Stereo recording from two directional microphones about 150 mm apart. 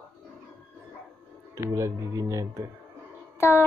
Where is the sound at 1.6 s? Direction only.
20° right (ahead or behind).